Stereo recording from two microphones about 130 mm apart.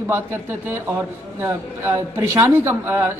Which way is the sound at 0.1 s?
20° right (ahead or behind).